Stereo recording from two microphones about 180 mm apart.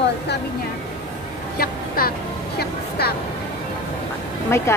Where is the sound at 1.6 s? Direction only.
55° left (ahead or behind).